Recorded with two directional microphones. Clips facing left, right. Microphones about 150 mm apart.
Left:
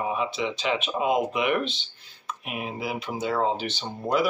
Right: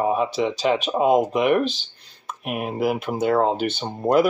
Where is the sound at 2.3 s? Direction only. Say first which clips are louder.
Right 6 dB; 55° right (ahead or behind).